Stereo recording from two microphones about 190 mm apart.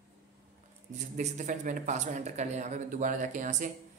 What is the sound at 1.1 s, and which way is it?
Speech, 40° right (ahead or behind).